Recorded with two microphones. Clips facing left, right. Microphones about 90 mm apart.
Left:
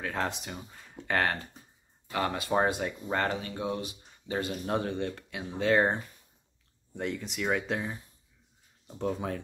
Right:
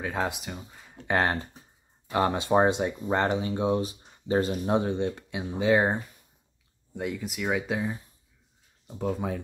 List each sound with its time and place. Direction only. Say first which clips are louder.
0.0 s speech: right 3 dB; 15° right (ahead or behind)
0.3 s speech: right 2 dB; centre (ahead or behind)
1.1 s speech: right 3 dB; 20° right (ahead or behind)
4.7 s speech: right 4 dB; 20° right (ahead or behind)
7.0 s speech: right 2 dB; 5° right (ahead or behind)